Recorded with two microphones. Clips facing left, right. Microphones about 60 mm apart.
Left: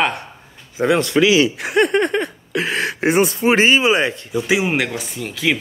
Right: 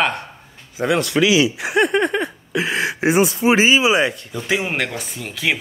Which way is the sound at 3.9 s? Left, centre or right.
Left.